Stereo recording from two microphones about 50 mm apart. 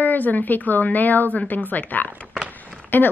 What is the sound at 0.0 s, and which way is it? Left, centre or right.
A woman's voice, left.